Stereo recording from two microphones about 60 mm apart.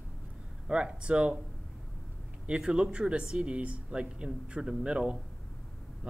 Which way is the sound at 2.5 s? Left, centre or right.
Centre.